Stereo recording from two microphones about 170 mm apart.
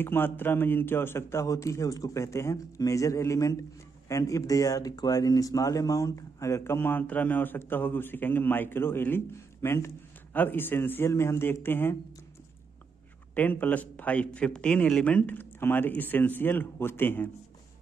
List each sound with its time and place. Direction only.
0.0 s speech: 10° left (ahead or behind)
13.3 s speech: 10° left (ahead or behind)